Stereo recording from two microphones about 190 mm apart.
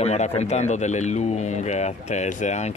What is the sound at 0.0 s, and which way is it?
Speech, 35° left (ahead or behind).